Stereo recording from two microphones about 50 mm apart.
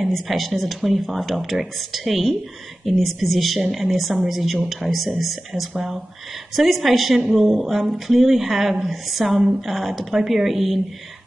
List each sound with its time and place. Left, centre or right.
0.0 s a woman's voice: centre